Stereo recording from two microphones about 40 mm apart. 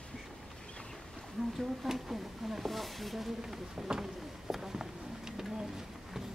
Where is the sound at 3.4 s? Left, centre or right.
Centre.